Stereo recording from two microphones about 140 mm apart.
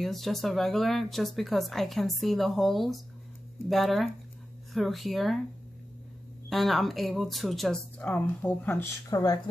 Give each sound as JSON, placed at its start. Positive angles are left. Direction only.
{"t": 0.0, "sound": "speech", "side_deg": 0}
{"t": 6.5, "sound": "speech", "side_deg": 0}
{"t": 9.1, "sound": "speech", "side_deg": 30}